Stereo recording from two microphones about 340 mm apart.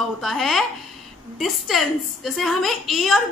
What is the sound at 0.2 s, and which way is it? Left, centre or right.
A child's voice, centre.